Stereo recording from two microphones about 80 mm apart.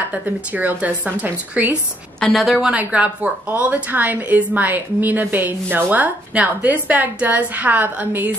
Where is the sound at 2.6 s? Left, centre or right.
Centre.